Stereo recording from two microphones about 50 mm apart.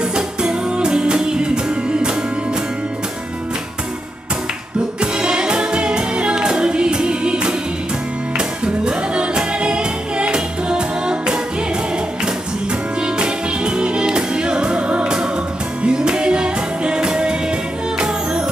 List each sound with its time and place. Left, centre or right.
0.1 s music: centre
5.0 s music: centre
13.0 s music: centre